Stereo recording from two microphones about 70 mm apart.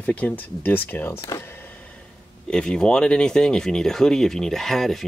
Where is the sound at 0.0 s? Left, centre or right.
Left.